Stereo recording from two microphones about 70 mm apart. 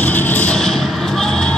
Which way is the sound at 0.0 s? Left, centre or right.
Left.